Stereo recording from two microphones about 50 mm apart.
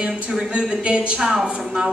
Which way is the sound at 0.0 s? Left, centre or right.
Centre.